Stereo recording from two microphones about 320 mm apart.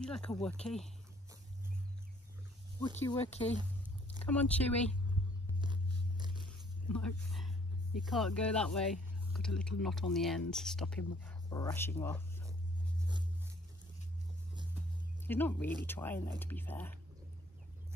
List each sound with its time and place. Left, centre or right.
0.0 s speech: centre
2.8 s speech: centre
4.2 s speech: centre
5.6 s biting: centre
6.9 s speech: left
8.0 s speech: centre
15.2 s speech: centre